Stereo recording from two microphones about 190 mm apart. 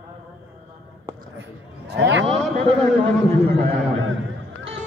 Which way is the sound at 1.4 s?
65° right (ahead or behind).